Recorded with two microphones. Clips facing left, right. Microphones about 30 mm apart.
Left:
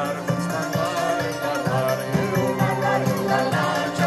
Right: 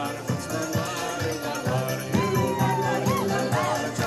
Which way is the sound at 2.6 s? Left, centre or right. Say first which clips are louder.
Left 3 dB; left.